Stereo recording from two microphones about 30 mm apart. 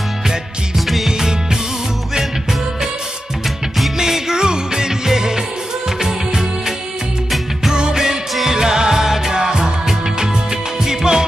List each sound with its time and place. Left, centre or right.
0.7 s music: centre
1.0 s music: centre
4.0 s music: centre
5.9 s music of bollywood: centre
7.7 s music: right